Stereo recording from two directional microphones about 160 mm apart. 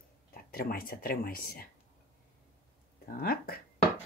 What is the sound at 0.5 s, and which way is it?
Speech, 65° left (ahead or behind).